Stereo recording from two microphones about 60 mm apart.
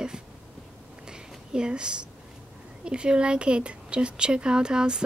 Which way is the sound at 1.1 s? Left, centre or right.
Centre.